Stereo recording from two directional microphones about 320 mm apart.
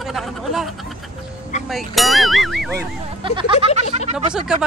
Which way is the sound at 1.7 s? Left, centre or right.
Centre.